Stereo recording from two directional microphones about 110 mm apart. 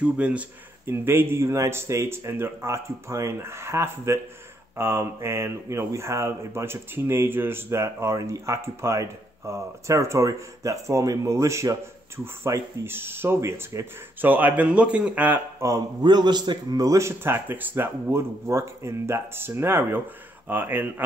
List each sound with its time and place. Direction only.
0.0 s speech: 10° right (ahead or behind)
16.0 s speech: 40° right (ahead or behind); by 21.0 s 15° right (ahead or behind)